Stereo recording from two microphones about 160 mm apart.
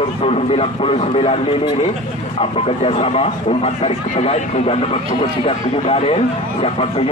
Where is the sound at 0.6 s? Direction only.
40° left (ahead or behind).